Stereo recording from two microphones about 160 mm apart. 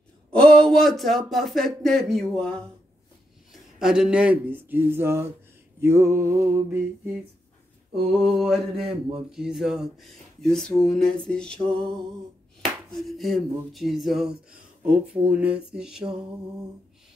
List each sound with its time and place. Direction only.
0.3 s speech: 5° left (ahead or behind); by 6.9 s 15° right (ahead or behind)
7.9 s speech: centre (ahead or behind)
12.9 s speech: centre (ahead or behind)
15.3 s speech: 5° right (ahead or behind)